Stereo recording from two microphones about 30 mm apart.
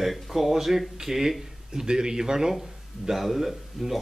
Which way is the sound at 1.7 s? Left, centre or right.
Right.